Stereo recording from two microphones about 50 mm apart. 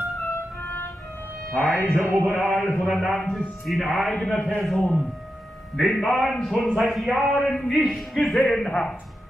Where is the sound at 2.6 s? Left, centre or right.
Left.